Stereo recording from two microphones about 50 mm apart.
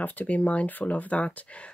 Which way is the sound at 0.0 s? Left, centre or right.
Left.